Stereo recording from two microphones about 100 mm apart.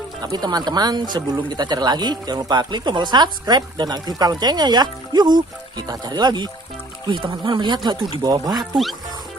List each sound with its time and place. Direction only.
0.2 s speech: 40° right (ahead or behind)